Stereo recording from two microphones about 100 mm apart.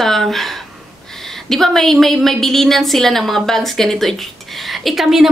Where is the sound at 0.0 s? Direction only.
Centre (ahead or behind).